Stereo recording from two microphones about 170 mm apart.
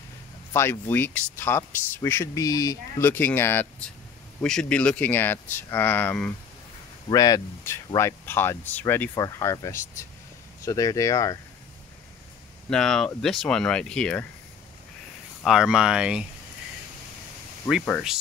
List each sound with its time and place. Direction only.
0.5 s speech: 15° left (ahead or behind)
7.1 s speech: 20° left (ahead or behind)
12.6 s speech: 5° left (ahead or behind)
15.4 s speech: 5° right (ahead or behind)